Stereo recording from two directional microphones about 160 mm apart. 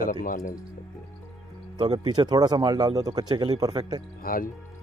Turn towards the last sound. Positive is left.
turn(degrees=65)  # may be behind; listen again after turning